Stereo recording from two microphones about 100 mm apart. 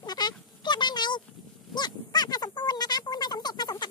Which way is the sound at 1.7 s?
45° left (ahead or behind).